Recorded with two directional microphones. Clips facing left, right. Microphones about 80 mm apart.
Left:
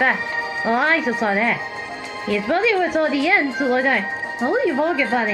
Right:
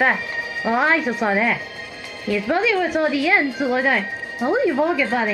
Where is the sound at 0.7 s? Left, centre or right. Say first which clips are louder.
Even; centre.